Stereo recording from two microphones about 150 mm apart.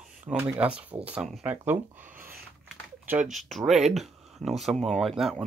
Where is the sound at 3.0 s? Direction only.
5° right (ahead or behind).